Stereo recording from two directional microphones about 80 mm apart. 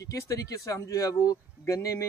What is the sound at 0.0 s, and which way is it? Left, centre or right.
Speech, left.